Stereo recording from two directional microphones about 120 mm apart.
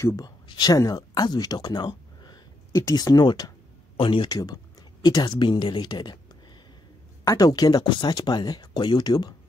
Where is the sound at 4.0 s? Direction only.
45° left (ahead or behind).